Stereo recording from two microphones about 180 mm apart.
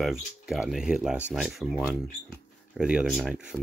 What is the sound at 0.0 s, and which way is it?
Speech, centre (ahead or behind).